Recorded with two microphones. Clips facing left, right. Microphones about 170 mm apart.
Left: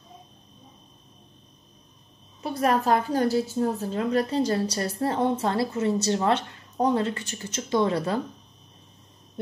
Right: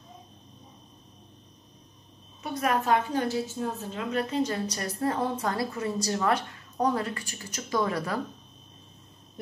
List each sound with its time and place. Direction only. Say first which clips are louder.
2.4 s a woman's voice: left 4 dB; 35° left (ahead or behind)